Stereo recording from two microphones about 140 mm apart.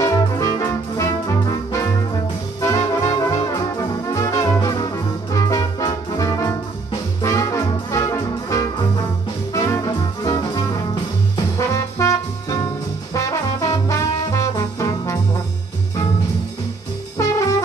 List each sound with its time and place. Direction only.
0.0 s music: 20° left (ahead or behind)
2.6 s brass instrument: 20° left (ahead or behind)
5.3 s music: 25° left (ahead or behind)
13.1 s trombone: 25° left (ahead or behind)
17.2 s music: 20° left (ahead or behind)